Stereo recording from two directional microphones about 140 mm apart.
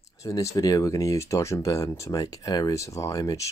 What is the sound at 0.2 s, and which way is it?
Speech, 25° left (ahead or behind).